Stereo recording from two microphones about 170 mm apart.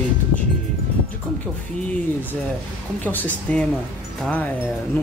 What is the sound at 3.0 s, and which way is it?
Speech, 10° left (ahead or behind).